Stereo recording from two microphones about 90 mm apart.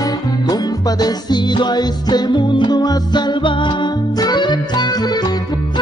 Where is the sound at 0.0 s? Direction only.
45° left (ahead or behind).